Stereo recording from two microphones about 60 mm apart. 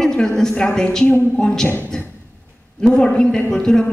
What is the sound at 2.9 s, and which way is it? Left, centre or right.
Speech, centre.